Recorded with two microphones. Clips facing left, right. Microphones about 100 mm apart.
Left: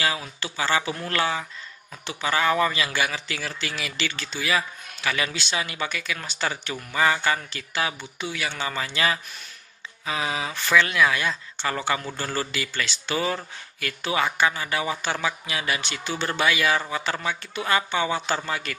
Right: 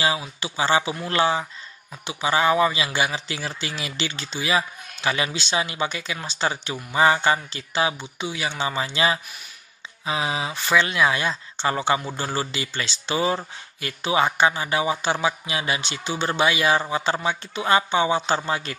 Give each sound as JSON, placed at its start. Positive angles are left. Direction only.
{"t": 0.2, "sound": "speech", "side_deg": -20}